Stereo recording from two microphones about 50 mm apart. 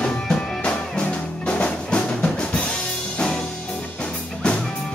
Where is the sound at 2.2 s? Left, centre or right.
Centre.